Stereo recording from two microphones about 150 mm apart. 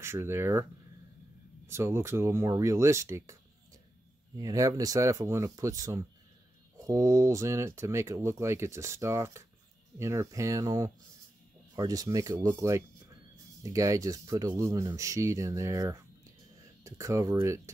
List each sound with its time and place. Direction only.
0.0 s speech: 15° right (ahead or behind)
1.7 s speech: 20° right (ahead or behind)
4.4 s speech: 25° right (ahead or behind)